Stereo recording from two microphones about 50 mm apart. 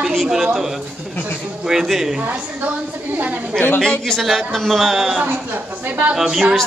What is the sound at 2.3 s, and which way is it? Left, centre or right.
Speech, right.